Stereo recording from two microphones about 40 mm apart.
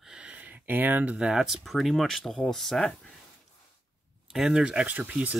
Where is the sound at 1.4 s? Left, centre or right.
Centre.